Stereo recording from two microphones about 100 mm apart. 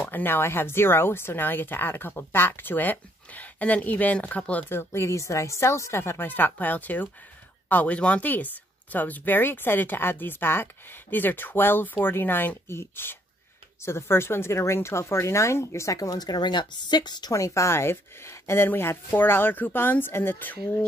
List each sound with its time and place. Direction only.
0.0 s speech: 20° left (ahead or behind)